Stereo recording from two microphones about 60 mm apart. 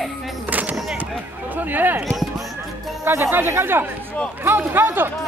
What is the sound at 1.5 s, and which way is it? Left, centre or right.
Speech, right.